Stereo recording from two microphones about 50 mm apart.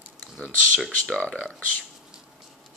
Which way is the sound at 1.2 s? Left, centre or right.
Left.